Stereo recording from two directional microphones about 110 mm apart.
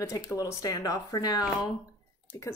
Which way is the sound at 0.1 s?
30° left (ahead or behind).